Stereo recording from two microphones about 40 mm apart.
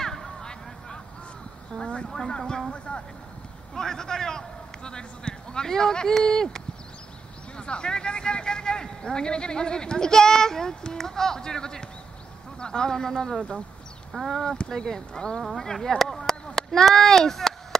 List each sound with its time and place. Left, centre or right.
0.0 s a sound: centre
1.8 s speech: left
2.0 s a man's voice: centre
3.7 s a man's voice: centre
7.5 s a man's voice: left
14.1 s speech: centre
14.7 s speech: centre